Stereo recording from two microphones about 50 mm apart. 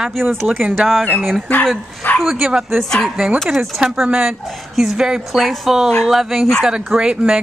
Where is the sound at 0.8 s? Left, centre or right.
Centre.